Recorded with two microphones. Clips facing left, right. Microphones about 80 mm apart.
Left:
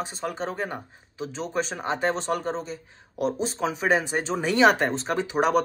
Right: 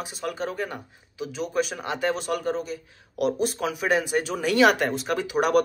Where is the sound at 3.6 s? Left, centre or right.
Left.